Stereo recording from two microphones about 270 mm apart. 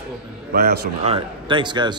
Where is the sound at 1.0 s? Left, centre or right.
Centre.